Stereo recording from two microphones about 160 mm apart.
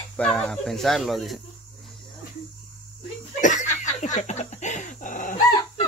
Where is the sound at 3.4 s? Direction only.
50° left (ahead or behind).